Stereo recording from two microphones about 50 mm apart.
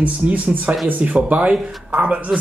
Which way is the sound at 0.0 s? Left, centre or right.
Right.